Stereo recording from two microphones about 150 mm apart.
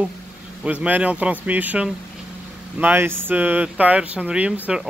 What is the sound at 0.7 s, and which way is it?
Speech, 10° right (ahead or behind).